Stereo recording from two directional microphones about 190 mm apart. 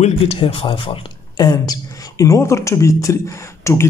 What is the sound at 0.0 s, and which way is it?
Speech, 30° left (ahead or behind).